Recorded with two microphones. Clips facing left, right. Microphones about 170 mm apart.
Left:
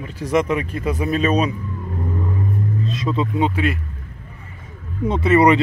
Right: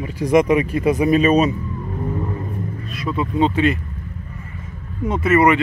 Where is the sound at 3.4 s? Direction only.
5° left (ahead or behind).